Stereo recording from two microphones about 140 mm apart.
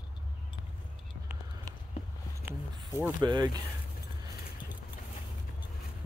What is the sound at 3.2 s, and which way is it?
Speech, 30° right (ahead or behind).